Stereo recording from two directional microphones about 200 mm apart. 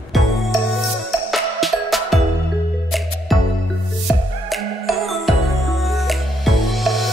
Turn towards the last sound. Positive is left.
turn(degrees=0)  # may be behind; listen again after turning